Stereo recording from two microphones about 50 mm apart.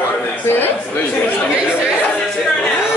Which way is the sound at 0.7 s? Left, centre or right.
Left.